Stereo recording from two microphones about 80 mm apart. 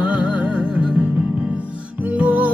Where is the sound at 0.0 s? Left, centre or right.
Centre.